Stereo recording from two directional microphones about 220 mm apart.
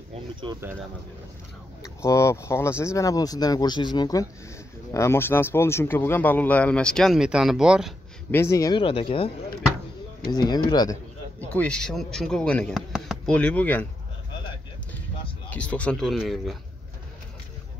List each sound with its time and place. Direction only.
0.1 s a sound: 20° right (ahead or behind)
1.8 s speech: 15° left (ahead or behind); by 7.9 s 5° right (ahead or behind)
8.3 s speech: 10° left (ahead or behind)
10.3 s speech: 20° left (ahead or behind)
11.4 s speech: 5° left (ahead or behind)
15.5 s speech: 5° left (ahead or behind)